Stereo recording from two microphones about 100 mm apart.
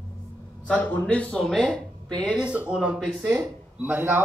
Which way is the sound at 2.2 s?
10° right (ahead or behind).